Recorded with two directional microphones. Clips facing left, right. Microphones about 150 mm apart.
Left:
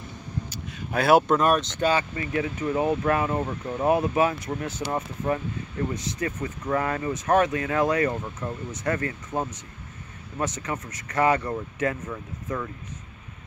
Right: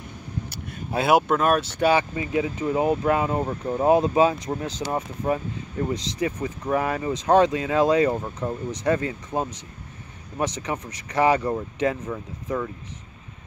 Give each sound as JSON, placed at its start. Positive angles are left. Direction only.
{"t": 0.5, "sound": "vehicle", "side_deg": -55}
{"t": 0.9, "sound": "speech", "side_deg": -15}